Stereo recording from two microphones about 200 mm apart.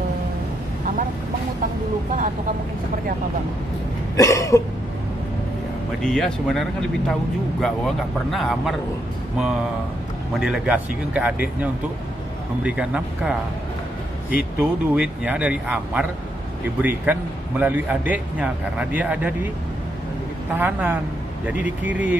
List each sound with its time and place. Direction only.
4.2 s a sound: 15° left (ahead or behind)
6.0 s speech: centre (ahead or behind)
10.4 s a man's voice: 5° right (ahead or behind)
20.5 s a man's voice: 10° right (ahead or behind)